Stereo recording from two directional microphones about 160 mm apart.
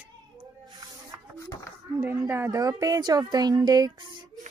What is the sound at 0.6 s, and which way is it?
Snake, 25° right (ahead or behind).